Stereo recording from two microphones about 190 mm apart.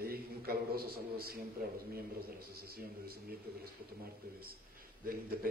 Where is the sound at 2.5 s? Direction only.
55° right (ahead or behind).